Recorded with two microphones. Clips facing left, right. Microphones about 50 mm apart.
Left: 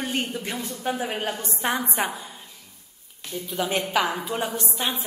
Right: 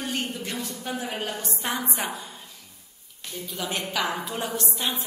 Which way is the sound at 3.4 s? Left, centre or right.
Centre.